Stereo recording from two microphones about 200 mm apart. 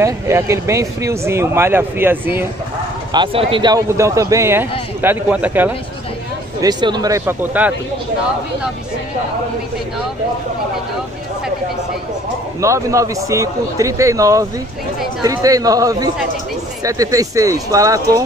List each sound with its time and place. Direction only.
0.0 s a man's voice: 15° right (ahead or behind)
3.1 s a man's voice: 25° right (ahead or behind); by 5.7 s 10° right (ahead or behind)
6.6 s a man's voice: 20° right (ahead or behind)
12.5 s a man's voice: 15° right (ahead or behind)